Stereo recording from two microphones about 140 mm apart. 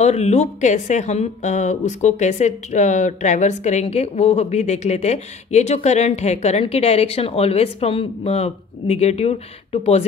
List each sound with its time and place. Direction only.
0.0 s a woman's voice: 50° left (ahead or behind)